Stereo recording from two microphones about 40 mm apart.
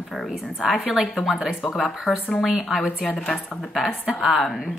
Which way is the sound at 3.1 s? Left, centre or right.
Centre.